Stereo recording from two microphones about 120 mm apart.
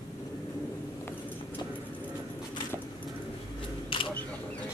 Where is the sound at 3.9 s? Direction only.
45° left (ahead or behind).